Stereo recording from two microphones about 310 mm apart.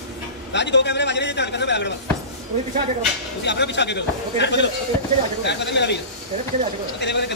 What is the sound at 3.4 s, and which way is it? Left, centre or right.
A man's voice, left.